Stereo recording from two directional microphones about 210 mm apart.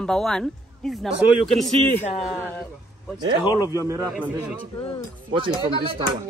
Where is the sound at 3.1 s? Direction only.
20° right (ahead or behind).